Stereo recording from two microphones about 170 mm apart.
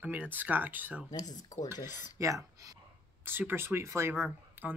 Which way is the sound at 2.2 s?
20° right (ahead or behind).